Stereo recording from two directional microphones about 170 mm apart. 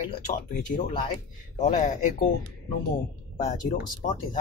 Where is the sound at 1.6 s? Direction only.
45° left (ahead or behind).